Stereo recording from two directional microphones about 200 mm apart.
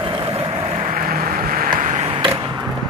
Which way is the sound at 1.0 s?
45° right (ahead or behind).